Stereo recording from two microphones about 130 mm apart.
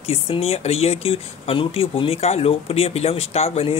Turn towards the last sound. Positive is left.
turn(degrees=50)  # may be behind; listen again after turning